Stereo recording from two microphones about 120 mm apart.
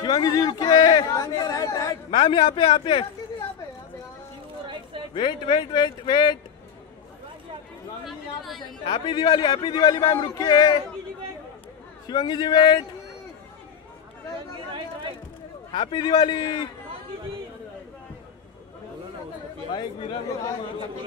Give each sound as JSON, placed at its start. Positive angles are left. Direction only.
{"t": 0.0, "sound": "a man's voice", "side_deg": 35}
{"t": 2.0, "sound": "a man's voice", "side_deg": 40}
{"t": 5.1, "sound": "a man's voice", "side_deg": 40}
{"t": 8.1, "sound": "a sound", "side_deg": 0}
{"t": 8.8, "sound": "a man's voice", "side_deg": 45}
{"t": 12.1, "sound": "a man's voice", "side_deg": 40}
{"t": 15.7, "sound": "a man's voice", "side_deg": 40}
{"t": 19.7, "sound": "a man's voice", "side_deg": 45}